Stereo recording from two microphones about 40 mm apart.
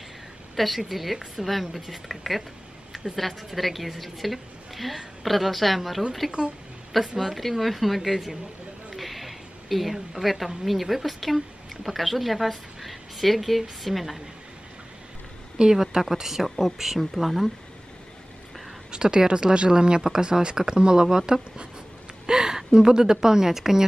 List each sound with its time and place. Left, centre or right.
0.6 s speech: centre
2.9 s a sound: centre
3.4 s speech: centre
8.9 s a sound: centre
10.5 s speech: centre
15.5 s a woman's voice: right
15.8 s speech: centre
18.9 s speech: centre
22.2 s a woman's voice: centre